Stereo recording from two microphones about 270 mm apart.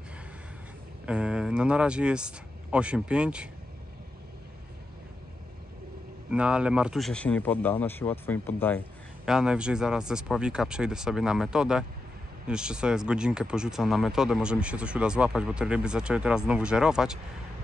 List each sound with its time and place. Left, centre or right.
1.0 s speech: centre
6.3 s speech: centre